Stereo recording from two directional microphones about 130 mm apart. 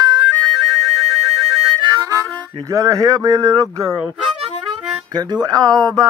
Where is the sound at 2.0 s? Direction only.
25° right (ahead or behind).